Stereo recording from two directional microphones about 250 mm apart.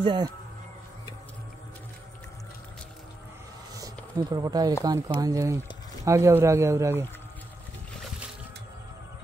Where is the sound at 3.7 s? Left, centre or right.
Centre.